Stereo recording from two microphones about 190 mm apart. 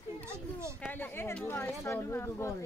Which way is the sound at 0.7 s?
10° left (ahead or behind).